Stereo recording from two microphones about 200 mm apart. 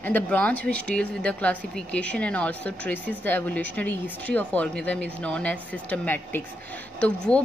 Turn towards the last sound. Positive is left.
turn(degrees=5)  # may be behind; listen again after turning